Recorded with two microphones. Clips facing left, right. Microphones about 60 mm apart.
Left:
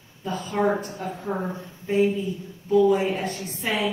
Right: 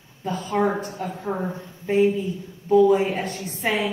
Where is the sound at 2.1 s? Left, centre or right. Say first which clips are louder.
Right 1 dB; right.